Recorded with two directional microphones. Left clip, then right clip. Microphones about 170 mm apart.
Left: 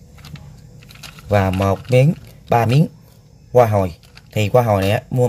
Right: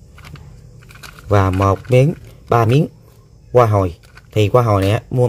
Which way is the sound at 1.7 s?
35° right (ahead or behind).